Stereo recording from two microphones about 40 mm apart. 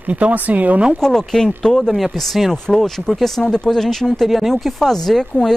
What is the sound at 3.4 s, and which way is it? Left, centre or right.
Speech, left.